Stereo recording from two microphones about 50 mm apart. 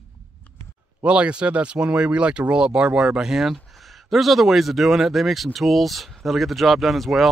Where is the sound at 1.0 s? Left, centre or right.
Right.